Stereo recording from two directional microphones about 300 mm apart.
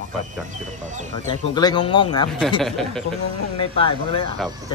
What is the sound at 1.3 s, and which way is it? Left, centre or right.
Speech, centre.